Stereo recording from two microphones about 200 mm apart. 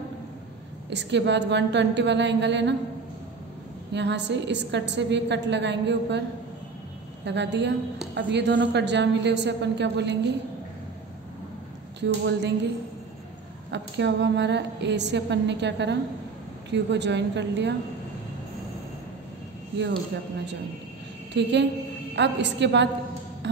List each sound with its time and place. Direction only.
0.8 s a woman's voice: 60° right (ahead or behind)
3.9 s a woman's voice: 60° right (ahead or behind)
7.2 s a woman's voice: 60° right (ahead or behind)
12.0 s a woman's voice: 60° right (ahead or behind)
13.7 s a woman's voice: 60° right (ahead or behind)
21.3 s a woman's voice: 60° right (ahead or behind)
23.4 s music: 60° right (ahead or behind)